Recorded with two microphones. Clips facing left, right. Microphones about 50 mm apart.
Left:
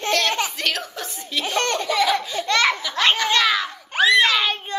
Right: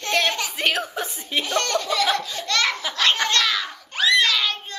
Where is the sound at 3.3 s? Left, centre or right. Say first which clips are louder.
Left 3 dB; centre.